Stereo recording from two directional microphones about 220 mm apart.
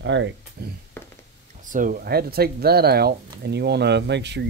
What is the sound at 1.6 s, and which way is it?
Speech, 35° right (ahead or behind).